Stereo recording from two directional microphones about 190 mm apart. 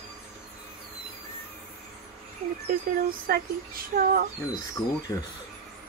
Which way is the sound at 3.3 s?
50° right (ahead or behind).